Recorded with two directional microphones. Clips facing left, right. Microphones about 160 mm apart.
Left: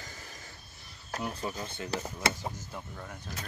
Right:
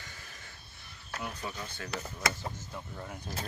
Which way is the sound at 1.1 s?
35° left (ahead or behind).